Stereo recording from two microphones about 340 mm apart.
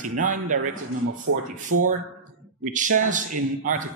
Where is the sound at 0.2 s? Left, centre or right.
Right.